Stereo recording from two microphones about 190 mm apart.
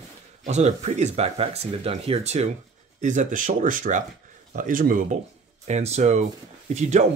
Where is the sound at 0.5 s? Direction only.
35° right (ahead or behind).